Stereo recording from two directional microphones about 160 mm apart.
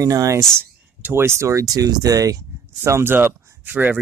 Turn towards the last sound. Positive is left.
turn(degrees=-10)  # may be behind; listen again after turning